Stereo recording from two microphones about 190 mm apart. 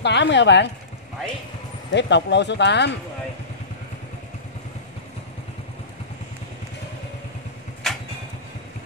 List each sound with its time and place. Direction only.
0.0 s speech: 65° left (ahead or behind)
1.9 s speech: 65° left (ahead or behind)
7.8 s vehicle: centre (ahead or behind)